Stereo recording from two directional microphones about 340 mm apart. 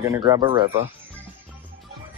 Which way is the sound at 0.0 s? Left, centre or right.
Centre.